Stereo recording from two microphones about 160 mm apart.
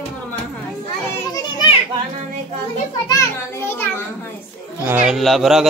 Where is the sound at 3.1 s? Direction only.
15° left (ahead or behind).